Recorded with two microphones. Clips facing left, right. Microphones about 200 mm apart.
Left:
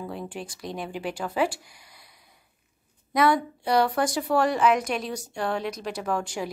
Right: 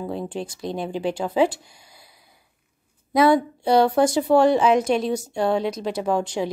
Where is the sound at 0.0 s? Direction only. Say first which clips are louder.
Right 6 dB; 25° right (ahead or behind).